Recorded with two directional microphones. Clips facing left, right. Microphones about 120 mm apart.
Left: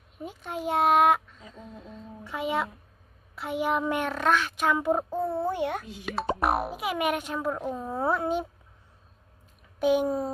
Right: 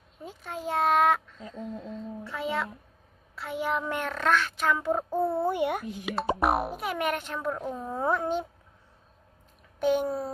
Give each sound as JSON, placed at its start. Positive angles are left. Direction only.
{"t": 0.2, "sound": "a child's voice", "side_deg": 15}
{"t": 2.2, "sound": "a child's voice", "side_deg": 15}
{"t": 5.1, "sound": "a child's voice", "side_deg": -10}
{"t": 9.8, "sound": "a child's voice", "side_deg": 10}